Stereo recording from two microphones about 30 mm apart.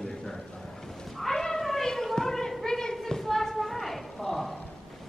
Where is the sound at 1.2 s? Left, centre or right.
Centre.